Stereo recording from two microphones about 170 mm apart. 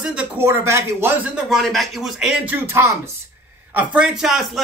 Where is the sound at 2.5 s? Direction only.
15° right (ahead or behind).